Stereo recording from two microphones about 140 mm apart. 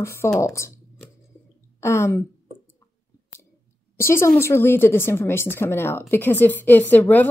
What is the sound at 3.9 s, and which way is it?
A woman's voice, 20° left (ahead or behind).